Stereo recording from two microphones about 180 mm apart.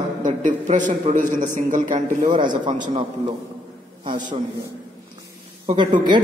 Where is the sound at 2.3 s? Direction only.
25° right (ahead or behind).